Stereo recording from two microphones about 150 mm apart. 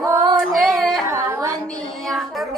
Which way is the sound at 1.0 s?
20° right (ahead or behind).